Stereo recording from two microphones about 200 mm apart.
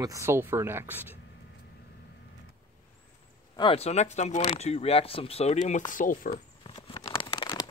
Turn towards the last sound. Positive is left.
turn(degrees=25)  # may be behind; listen again after turning